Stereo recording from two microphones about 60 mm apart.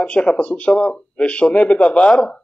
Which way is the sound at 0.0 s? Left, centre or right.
Centre.